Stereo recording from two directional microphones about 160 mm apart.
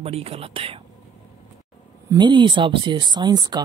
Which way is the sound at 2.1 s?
30° right (ahead or behind).